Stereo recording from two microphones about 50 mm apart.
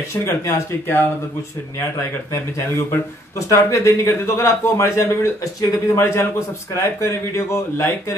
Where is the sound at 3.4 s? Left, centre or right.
Left.